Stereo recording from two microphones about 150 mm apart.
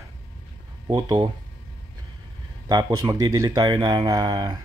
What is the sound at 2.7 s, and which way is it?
Speech, 25° right (ahead or behind).